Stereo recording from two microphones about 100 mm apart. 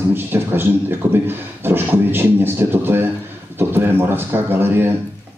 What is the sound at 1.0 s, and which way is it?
A man's voice, 20° right (ahead or behind).